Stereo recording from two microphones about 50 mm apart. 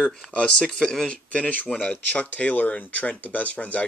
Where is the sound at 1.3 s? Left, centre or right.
Left.